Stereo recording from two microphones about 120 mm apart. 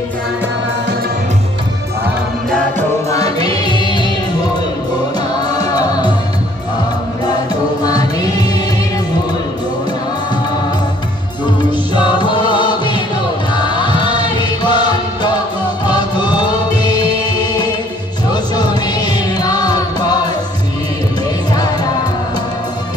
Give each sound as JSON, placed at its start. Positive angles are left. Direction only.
{"t": 3.1, "sound": "music", "side_deg": 30}
{"t": 5.5, "sound": "music", "side_deg": 30}
{"t": 7.8, "sound": "music", "side_deg": 35}
{"t": 11.9, "sound": "music", "side_deg": 40}
{"t": 18.3, "sound": "music", "side_deg": 35}